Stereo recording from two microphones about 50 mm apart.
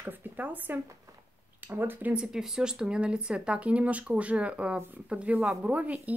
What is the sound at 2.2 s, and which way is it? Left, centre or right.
A woman's voice, centre.